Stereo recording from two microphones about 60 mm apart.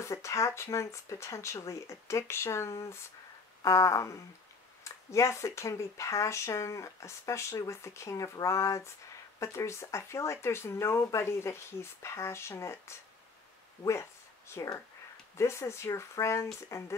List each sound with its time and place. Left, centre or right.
0.0 s speech: left
14.5 s speech: left
15.3 s speech: left